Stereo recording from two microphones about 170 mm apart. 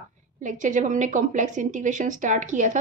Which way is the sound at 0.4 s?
50° right (ahead or behind).